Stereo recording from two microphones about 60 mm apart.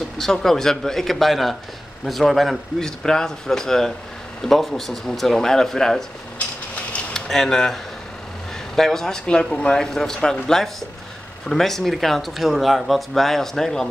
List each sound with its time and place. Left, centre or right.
0.2 s speech: centre
6.3 s a sound: left
7.2 s speech: centre
11.4 s speech: centre